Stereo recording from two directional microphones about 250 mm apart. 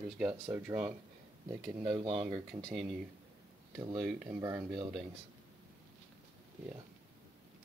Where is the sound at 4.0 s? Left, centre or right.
Centre.